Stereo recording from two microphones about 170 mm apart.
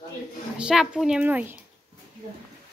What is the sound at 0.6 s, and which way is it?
A child's voice, 5° right (ahead or behind).